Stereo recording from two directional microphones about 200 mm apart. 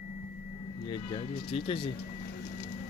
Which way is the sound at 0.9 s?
30° left (ahead or behind).